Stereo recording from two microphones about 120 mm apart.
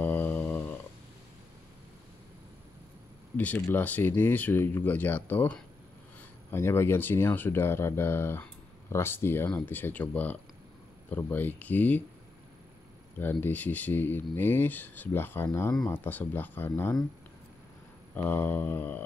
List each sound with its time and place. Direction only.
0.0 s a sound: 15° left (ahead or behind)
3.3 s speech: 15° left (ahead or behind)
13.2 s speech: 15° left (ahead or behind)
18.1 s speech: 15° left (ahead or behind)